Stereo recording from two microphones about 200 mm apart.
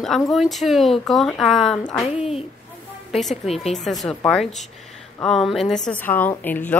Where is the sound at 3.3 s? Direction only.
30° left (ahead or behind).